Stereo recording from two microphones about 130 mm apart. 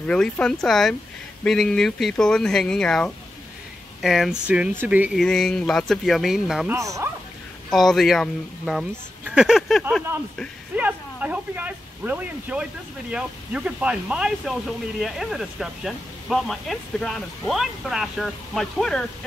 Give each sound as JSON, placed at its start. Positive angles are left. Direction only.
{"t": 0.0, "sound": "speech", "side_deg": 5}
{"t": 5.1, "sound": "speech", "side_deg": 5}
{"t": 6.7, "sound": "speech", "side_deg": -20}
{"t": 7.7, "sound": "speech", "side_deg": 0}
{"t": 10.8, "sound": "speech", "side_deg": -10}